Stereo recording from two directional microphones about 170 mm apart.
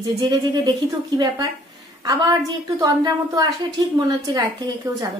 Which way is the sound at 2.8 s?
20° right (ahead or behind).